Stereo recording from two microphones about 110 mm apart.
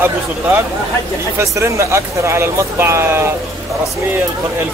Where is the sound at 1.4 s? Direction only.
25° right (ahead or behind).